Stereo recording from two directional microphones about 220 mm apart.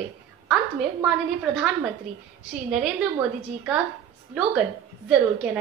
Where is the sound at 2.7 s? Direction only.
Centre (ahead or behind).